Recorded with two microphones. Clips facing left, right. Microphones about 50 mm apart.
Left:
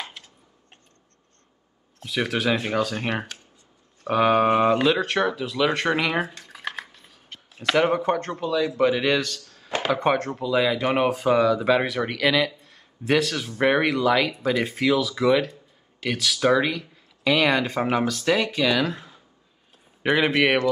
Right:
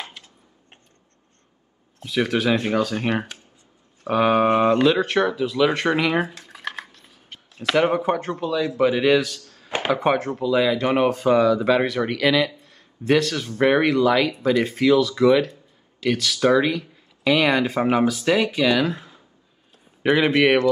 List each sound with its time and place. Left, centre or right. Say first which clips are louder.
2.0 s speech: right 3 dB; centre
9.7 s a sound: right 2 dB; right
9.9 s speech: right 2 dB; centre